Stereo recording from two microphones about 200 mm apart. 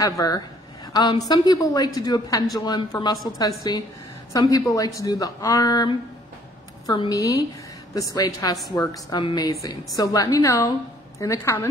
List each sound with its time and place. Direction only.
0.0 s a woman's voice: 15° left (ahead or behind)